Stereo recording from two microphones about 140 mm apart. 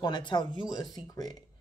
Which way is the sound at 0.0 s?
35° left (ahead or behind).